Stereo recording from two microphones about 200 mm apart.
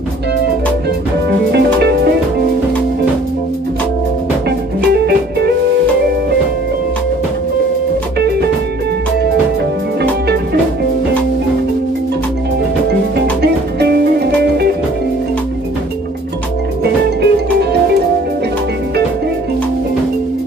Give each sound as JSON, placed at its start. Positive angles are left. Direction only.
{"t": 1.5, "sound": "music", "side_deg": -55}
{"t": 4.5, "sound": "music", "side_deg": -55}
{"t": 13.4, "sound": "music", "side_deg": -55}
{"t": 17.2, "sound": "music", "side_deg": -55}